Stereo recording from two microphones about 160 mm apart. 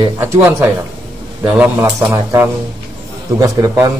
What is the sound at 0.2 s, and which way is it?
A man's voice, 15° right (ahead or behind).